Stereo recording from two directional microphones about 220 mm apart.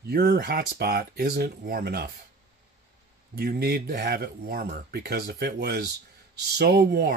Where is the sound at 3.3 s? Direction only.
45° right (ahead or behind).